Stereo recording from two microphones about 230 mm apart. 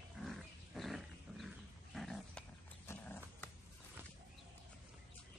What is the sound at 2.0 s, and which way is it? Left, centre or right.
Dog, centre.